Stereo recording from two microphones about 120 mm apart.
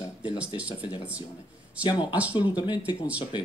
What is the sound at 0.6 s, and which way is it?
Speech, 10° right (ahead or behind).